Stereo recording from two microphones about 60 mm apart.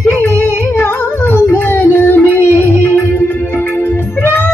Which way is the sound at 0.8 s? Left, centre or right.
Left.